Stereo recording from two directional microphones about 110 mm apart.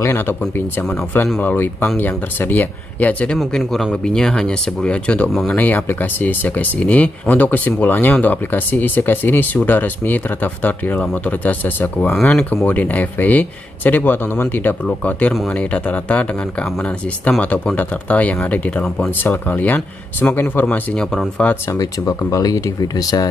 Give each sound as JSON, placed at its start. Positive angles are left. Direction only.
{"t": 0.0, "sound": "speech", "side_deg": 20}
{"t": 3.3, "sound": "speech", "side_deg": 0}
{"t": 21.7, "sound": "speech", "side_deg": 35}